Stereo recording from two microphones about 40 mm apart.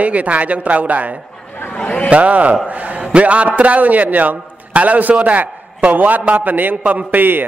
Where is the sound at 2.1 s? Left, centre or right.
Right.